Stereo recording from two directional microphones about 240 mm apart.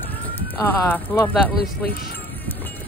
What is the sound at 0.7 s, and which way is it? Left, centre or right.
Speech, centre.